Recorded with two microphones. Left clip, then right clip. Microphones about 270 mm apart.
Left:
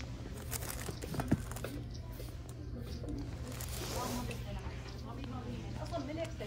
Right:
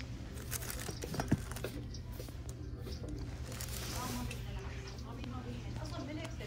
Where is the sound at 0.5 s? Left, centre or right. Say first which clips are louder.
Even; left.